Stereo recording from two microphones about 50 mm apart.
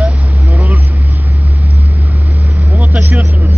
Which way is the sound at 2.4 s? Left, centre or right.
Right.